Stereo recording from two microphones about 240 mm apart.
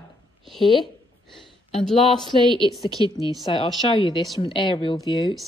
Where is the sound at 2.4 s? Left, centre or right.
Centre.